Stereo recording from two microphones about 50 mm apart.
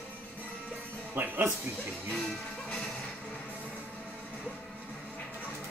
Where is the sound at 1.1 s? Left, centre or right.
Right.